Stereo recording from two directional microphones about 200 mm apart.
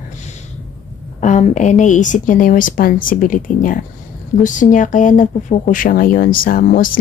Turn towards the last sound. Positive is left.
turn(degrees=45)  # may be behind; listen again after turning